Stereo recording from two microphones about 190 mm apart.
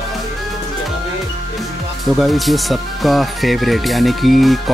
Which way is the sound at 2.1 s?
Centre (ahead or behind).